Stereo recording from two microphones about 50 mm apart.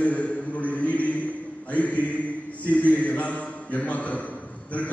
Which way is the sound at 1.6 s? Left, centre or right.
Left.